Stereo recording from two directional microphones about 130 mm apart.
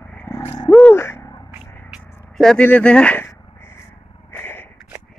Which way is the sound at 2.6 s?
10° left (ahead or behind).